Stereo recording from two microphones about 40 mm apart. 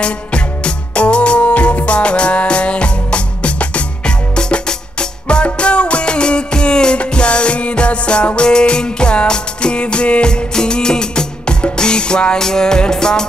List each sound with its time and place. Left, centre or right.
0.0 s music: left
4.4 s music: left